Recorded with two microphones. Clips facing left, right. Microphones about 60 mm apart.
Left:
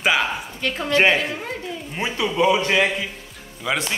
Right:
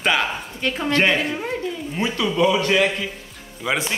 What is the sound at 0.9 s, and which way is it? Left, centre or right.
A man's voice, centre.